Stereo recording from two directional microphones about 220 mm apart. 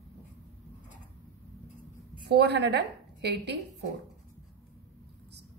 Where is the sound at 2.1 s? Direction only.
50° right (ahead or behind).